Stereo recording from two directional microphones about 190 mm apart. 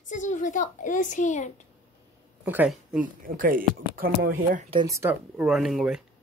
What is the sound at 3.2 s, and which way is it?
Speech, 45° right (ahead or behind).